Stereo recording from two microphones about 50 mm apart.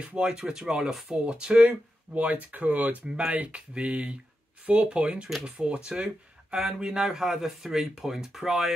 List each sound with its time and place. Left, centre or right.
0.0 s speech: right; by 1.1 s centre
1.2 s speech: right; by 8.7 s centre